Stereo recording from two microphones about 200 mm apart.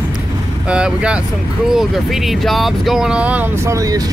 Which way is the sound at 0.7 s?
5° right (ahead or behind).